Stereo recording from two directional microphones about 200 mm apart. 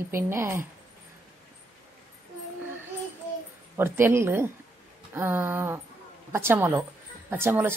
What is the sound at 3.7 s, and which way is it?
Speech, 10° right (ahead or behind).